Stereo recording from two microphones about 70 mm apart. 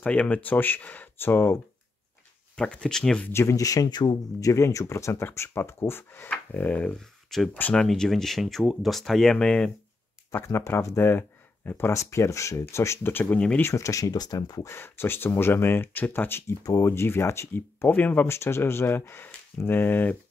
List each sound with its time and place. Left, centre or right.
0.0 s speech: centre
2.5 s speech: centre
3.3 s speech: left
3.5 s speech: left; by 7.0 s centre
7.2 s speech: centre
10.3 s speech: left
11.9 s speech: left
13.1 s speech: left
13.7 s speech: left
14.6 s speech: left
16.4 s speech: left
16.8 s speech: left
18.3 s speech: left